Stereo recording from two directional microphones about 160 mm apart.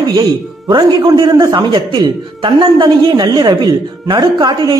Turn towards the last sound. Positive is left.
turn(degrees=-30)  # may be behind; listen again after turning